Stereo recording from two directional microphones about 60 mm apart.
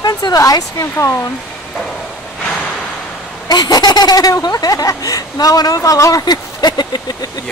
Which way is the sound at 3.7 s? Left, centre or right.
Left.